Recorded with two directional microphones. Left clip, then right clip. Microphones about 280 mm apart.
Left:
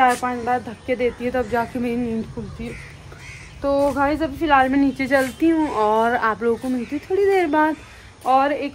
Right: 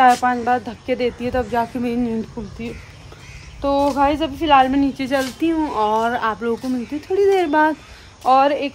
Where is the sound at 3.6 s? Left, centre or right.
Centre.